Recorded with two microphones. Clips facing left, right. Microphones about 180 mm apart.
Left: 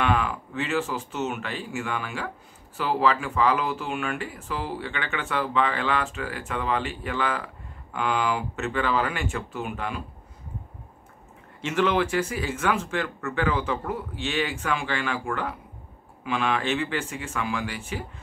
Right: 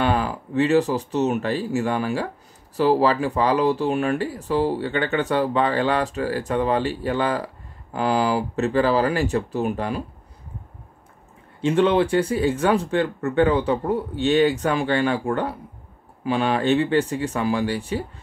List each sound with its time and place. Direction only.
0.0 s speech: 35° right (ahead or behind)
11.6 s speech: 30° right (ahead or behind)